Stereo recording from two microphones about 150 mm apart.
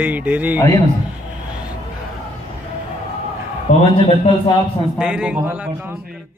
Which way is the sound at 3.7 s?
55° left (ahead or behind).